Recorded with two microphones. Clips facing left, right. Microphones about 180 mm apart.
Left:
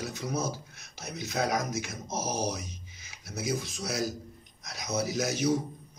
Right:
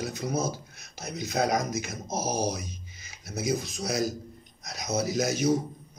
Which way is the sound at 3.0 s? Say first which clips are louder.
Right 3 dB; 40° right (ahead or behind).